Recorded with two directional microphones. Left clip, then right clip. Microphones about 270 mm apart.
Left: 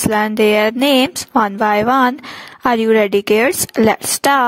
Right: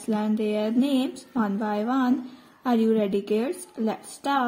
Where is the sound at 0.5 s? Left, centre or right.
Left.